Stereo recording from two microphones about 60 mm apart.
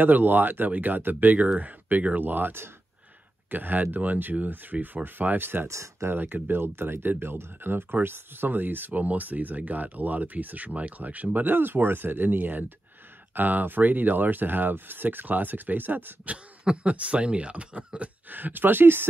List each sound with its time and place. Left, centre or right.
0.0 s speech: right
5.7 s speech: right
6.0 s speech: right
16.3 s speech: right